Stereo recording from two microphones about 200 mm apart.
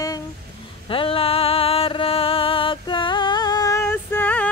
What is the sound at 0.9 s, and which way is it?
Music, 25° left (ahead or behind).